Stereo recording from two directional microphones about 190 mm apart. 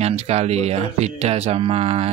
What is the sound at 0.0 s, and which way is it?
Speech, 35° right (ahead or behind).